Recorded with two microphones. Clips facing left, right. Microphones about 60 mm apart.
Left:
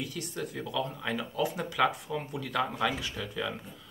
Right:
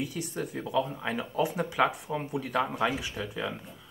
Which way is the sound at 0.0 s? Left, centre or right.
Right.